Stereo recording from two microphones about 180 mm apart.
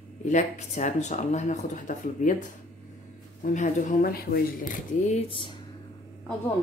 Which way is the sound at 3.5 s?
55° left (ahead or behind).